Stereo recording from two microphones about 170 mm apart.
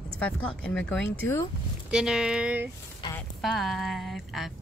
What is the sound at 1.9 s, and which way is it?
Speech, 5° right (ahead or behind).